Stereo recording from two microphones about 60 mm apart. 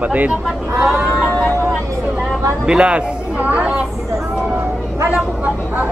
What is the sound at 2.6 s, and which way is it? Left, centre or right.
A man's voice, centre.